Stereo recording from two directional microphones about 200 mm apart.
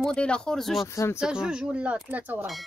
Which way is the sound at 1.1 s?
5° right (ahead or behind).